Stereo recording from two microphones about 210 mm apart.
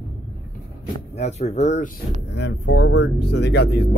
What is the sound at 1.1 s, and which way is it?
Speech, 30° left (ahead or behind).